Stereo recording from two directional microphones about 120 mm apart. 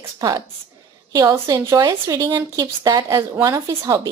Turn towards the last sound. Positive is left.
turn(degrees=-25)  # may be behind; listen again after turning